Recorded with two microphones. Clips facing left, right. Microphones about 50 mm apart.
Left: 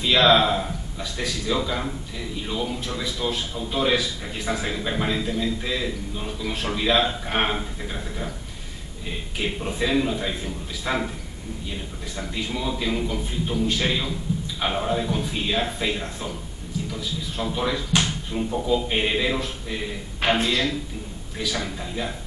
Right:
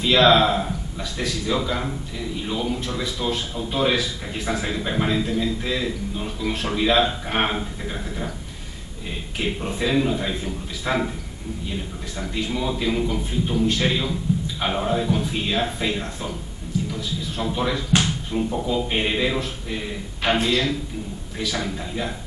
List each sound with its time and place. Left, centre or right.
0.0 s a man's voice: centre
9.8 s a man's voice: centre
12.2 s a man's voice: centre